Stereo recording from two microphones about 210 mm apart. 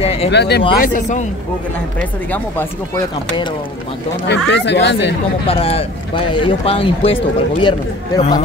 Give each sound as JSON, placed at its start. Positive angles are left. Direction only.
{"t": 0.0, "sound": "a sound", "side_deg": 30}
{"t": 0.3, "sound": "speech", "side_deg": 55}
{"t": 2.0, "sound": "speech", "side_deg": 10}
{"t": 4.3, "sound": "speech", "side_deg": 55}
{"t": 5.5, "sound": "speech", "side_deg": 30}